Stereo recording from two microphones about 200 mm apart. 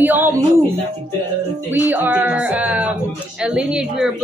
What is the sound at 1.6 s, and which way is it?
A woman's voice, 10° right (ahead or behind).